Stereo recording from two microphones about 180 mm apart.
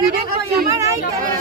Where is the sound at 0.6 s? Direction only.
20° right (ahead or behind).